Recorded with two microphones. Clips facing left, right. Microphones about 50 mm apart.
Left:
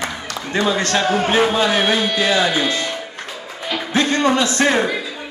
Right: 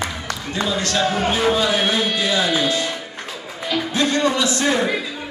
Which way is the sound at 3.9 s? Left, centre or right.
Left.